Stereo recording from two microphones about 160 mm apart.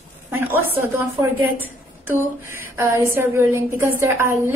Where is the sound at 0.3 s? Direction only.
15° right (ahead or behind).